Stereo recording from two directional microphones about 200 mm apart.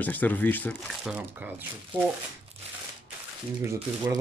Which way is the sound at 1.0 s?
5° right (ahead or behind).